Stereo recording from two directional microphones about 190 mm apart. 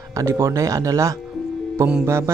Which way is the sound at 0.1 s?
15° right (ahead or behind).